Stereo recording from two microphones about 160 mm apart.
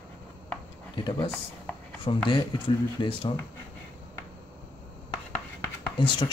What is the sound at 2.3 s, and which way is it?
Speech, 30° left (ahead or behind).